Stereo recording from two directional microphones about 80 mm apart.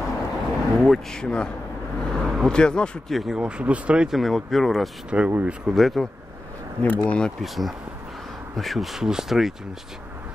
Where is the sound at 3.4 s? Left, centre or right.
Centre.